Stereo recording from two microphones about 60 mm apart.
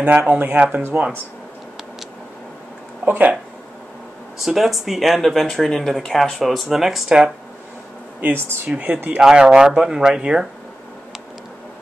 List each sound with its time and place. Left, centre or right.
0.0 s speech: right
3.1 s speech: right
4.4 s speech: centre
8.2 s speech: right
8.6 s speech: centre